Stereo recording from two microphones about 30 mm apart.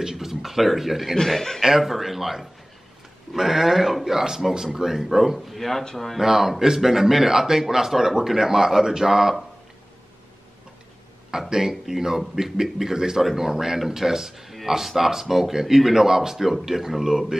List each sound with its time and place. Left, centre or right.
0.0 s speech: centre
1.3 s speech: centre
1.8 s speech: centre
5.6 s speech: centre
6.1 s speech: centre
11.3 s speech: right
12.9 s speech: right